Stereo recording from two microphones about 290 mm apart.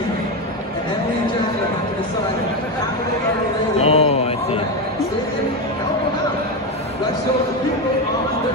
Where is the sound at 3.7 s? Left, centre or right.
Left.